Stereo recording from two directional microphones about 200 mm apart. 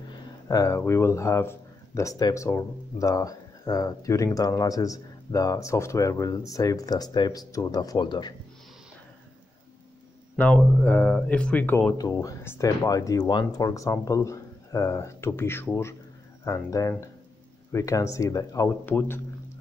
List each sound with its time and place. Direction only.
0.5 s speech: 15° left (ahead or behind)
10.3 s speech: 5° left (ahead or behind)